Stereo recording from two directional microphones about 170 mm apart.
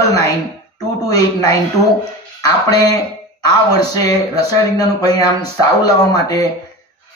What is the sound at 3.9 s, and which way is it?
A man's voice, 20° left (ahead or behind).